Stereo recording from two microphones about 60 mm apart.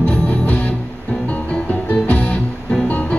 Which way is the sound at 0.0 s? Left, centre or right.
Left.